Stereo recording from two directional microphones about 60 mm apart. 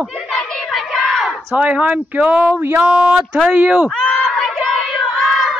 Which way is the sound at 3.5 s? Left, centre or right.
Right.